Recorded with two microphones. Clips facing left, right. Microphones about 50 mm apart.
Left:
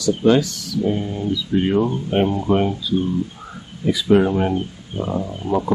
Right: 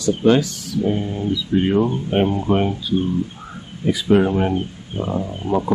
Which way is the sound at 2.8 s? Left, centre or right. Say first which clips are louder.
Even; right.